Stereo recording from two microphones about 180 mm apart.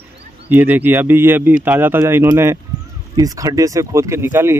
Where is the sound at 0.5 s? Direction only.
10° right (ahead or behind).